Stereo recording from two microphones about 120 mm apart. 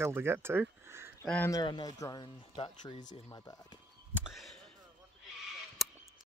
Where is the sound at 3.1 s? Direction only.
30° left (ahead or behind).